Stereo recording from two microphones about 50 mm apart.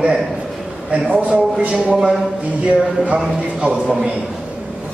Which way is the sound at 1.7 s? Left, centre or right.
Centre.